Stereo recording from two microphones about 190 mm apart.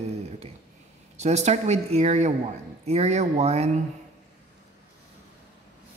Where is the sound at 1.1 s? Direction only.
35° right (ahead or behind).